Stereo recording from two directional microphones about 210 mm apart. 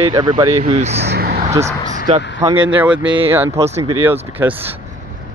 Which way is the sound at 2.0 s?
25° right (ahead or behind).